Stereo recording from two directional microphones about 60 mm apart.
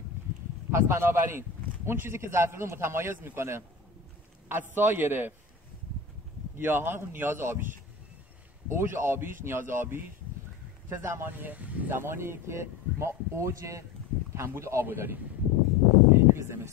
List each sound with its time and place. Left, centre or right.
0.7 s a man's voice: right
6.6 s a man's voice: right
8.6 s a man's voice: right
11.2 s a man's voice: right
12.0 s speech: right
14.9 s a man's voice: right
16.1 s a sound: right